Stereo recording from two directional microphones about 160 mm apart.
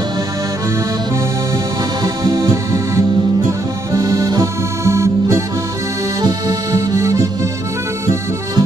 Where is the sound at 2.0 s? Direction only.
25° right (ahead or behind).